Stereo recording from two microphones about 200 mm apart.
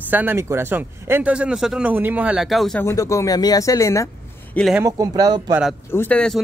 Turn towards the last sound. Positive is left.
turn(degrees=5)  # may be behind; listen again after turning